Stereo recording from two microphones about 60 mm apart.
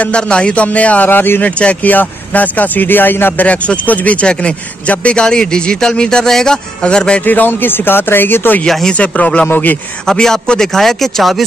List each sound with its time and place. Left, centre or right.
0.0 s speech: centre; by 1.4 s left
1.4 s speech: left
3.4 s a man's voice: left
7.2 s speech: left
8.9 s speech: left
10.0 s a man's voice: centre